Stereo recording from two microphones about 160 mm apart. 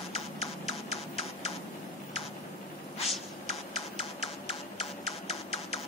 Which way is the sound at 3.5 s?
40° left (ahead or behind).